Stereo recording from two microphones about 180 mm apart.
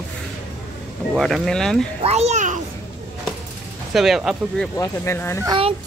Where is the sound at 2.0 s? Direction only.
35° right (ahead or behind).